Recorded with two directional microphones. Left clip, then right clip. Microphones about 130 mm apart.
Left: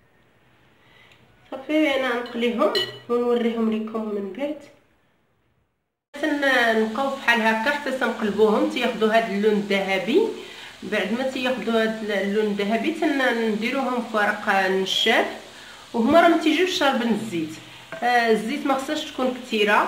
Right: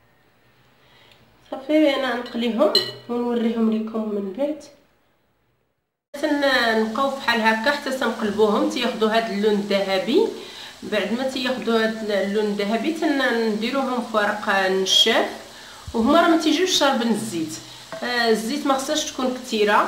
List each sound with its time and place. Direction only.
1.7 s a woman's voice: 40° right (ahead or behind)
2.6 s speech: centre (ahead or behind)
6.4 s speech: 20° left (ahead or behind)